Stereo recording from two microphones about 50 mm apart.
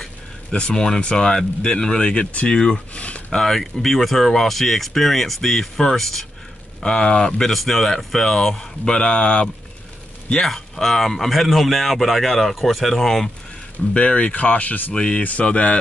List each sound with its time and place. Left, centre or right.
0.0 s speech: centre
2.1 s speech: left
2.5 s speech: centre
6.8 s speech: centre
7.5 s speech: centre
10.3 s speech: centre
13.9 s speech: left
15.0 s speech: centre